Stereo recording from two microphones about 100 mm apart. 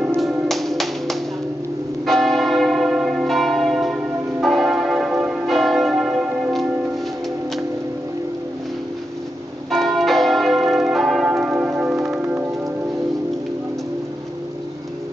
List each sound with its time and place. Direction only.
0.2 s music: centre (ahead or behind)
2.0 s church bell: centre (ahead or behind)
9.7 s church bell: centre (ahead or behind)
12.0 s music: 25° right (ahead or behind)